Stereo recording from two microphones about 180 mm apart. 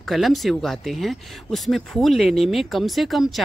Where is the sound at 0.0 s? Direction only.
Centre (ahead or behind).